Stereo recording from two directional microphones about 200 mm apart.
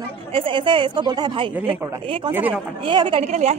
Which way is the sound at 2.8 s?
25° right (ahead or behind).